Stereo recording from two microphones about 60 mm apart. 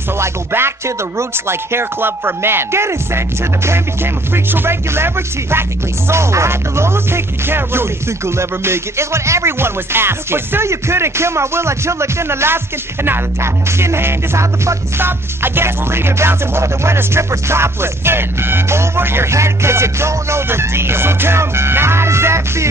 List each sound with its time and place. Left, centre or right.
0.2 s music: right